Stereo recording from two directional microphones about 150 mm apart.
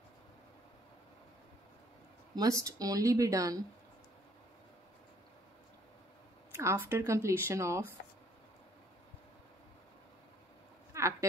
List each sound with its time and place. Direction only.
2.3 s speech: 20° right (ahead or behind)
6.5 s speech: 15° right (ahead or behind)
10.9 s a sound: 20° right (ahead or behind)